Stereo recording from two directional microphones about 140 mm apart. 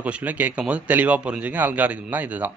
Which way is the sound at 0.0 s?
10° right (ahead or behind).